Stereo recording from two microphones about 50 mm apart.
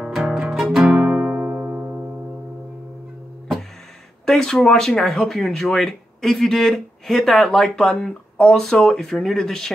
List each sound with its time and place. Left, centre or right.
0.0 s music: centre
1.1 s music: right
4.3 s speech: centre